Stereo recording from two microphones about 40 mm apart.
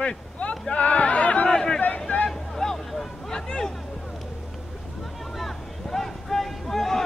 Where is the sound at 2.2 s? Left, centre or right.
Centre.